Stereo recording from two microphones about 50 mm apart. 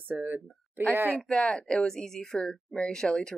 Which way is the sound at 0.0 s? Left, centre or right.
Right.